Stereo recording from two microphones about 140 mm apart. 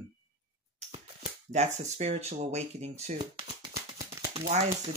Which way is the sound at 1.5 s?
55° right (ahead or behind).